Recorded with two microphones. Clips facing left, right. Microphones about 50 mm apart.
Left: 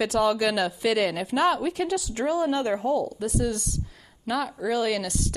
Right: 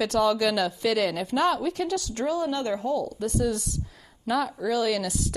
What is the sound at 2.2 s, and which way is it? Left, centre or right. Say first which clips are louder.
Speech: left 3 dB; left.